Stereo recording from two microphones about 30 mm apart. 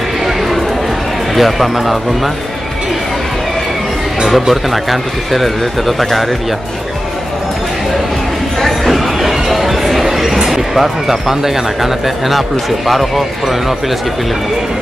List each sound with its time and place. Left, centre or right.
1.3 s speech: centre
4.3 s speech: centre
8.5 s a sound: centre
10.4 s speech: centre